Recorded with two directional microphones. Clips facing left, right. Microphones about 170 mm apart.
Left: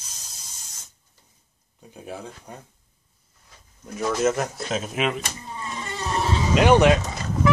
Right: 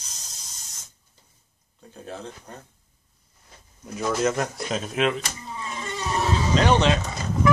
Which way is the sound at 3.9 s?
Centre (ahead or behind).